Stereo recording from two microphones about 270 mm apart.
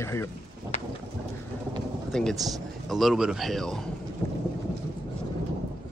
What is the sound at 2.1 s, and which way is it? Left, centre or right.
A man's voice, centre.